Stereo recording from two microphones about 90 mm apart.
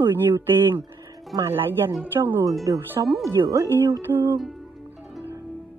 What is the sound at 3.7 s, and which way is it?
Speech, 25° right (ahead or behind).